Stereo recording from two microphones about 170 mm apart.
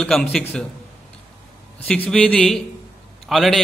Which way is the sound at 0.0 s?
5° left (ahead or behind).